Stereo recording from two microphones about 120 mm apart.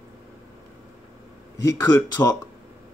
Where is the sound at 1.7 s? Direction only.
25° left (ahead or behind).